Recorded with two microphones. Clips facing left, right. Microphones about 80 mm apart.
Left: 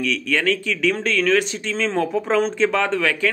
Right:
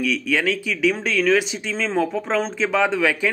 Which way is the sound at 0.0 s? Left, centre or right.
Centre.